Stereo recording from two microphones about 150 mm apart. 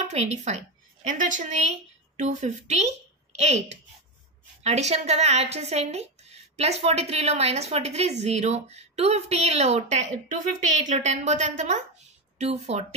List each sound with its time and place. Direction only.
0.1 s speech: 45° right (ahead or behind)
1.1 s a woman's voice: 60° right (ahead or behind)